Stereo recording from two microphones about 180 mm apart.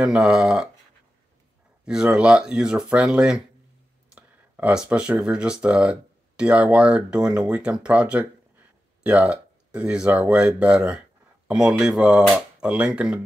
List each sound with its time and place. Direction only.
0.0 s speech: 5° right (ahead or behind)
1.9 s speech: 5° right (ahead or behind)